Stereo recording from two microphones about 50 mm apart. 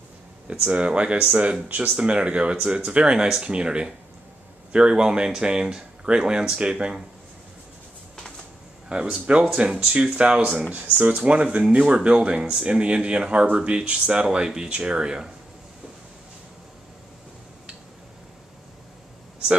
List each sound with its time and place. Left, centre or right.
0.7 s speech: right
8.8 s speech: centre
10.7 s speech: right; by 15.3 s centre